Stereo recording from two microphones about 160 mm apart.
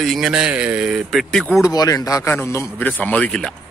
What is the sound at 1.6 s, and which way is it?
Speech, 20° left (ahead or behind).